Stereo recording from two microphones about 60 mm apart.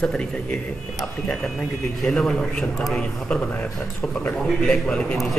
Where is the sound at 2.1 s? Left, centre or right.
Centre.